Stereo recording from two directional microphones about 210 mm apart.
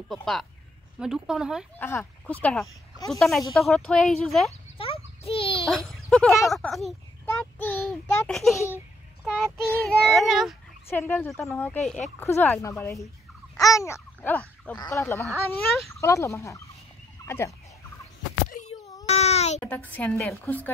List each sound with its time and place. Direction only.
0.1 s speech: centre (ahead or behind)
1.8 s a woman's voice: 10° left (ahead or behind)
4.5 s turkey: 25° left (ahead or behind)
5.7 s speech: centre (ahead or behind)
10.9 s a woman's voice: 10° left (ahead or behind)
13.6 s babbling: 15° left (ahead or behind)
14.9 s a woman's voice: 10° left (ahead or behind)
18.5 s a sound: 35° left (ahead or behind)
19.0 s baby cry: 30° left (ahead or behind)
19.6 s a woman's voice: 5° left (ahead or behind)